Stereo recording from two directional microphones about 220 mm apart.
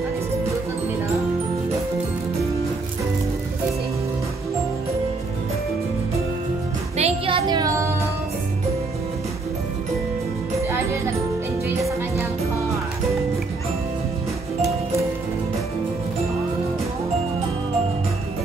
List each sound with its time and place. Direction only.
7.0 s music: 25° right (ahead or behind)